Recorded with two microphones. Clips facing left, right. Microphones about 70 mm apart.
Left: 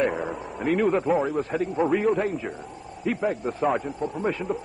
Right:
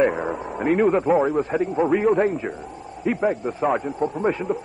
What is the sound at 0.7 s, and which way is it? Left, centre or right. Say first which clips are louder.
A man's voice: right 4 dB; centre.